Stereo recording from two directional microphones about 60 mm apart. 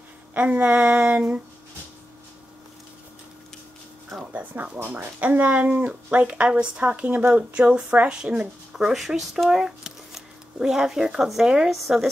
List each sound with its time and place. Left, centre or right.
0.3 s speech: right
4.2 s speech: right
8.7 s speech: centre